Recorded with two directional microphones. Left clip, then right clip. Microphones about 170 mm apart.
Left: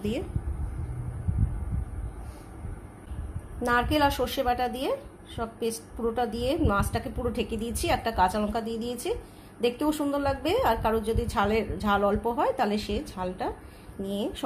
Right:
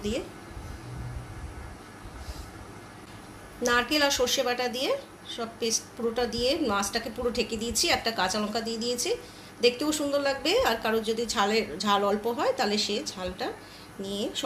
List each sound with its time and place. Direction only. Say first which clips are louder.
3.6 s a woman's voice: even; 45° left (ahead or behind)